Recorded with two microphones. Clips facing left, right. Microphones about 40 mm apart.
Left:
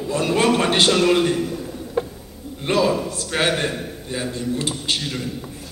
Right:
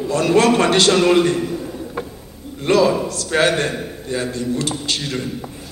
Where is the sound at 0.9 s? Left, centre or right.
Centre.